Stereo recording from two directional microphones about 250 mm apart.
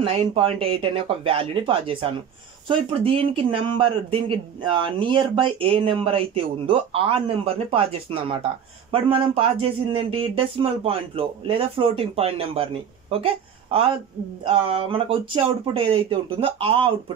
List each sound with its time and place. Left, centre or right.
0.0 s a man's voice: right